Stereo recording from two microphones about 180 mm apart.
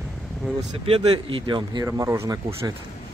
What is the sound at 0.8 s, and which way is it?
Speech, 30° right (ahead or behind).